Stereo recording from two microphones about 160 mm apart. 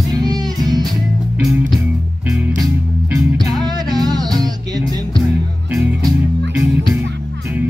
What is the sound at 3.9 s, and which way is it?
Music, 25° right (ahead or behind).